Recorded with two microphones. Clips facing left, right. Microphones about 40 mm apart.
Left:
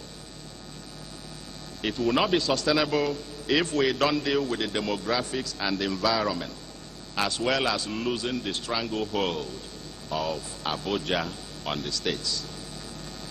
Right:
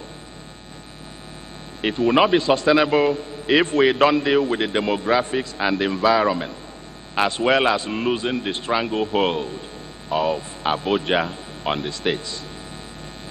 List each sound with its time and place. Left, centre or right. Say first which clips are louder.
1.8 s a man's voice: right 7 dB; right